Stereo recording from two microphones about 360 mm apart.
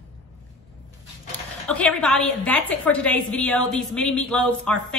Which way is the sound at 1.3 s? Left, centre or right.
Centre.